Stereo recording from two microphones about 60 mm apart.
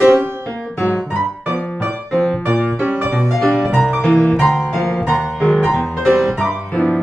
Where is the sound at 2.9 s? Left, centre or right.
Right.